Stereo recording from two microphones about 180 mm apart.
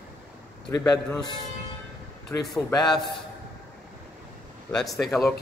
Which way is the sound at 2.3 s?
20° left (ahead or behind).